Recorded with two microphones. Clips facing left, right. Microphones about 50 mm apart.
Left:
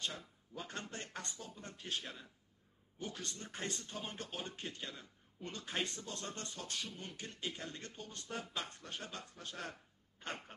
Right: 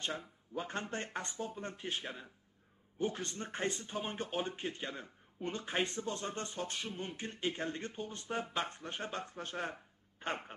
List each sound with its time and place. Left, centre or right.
0.0 s speech: right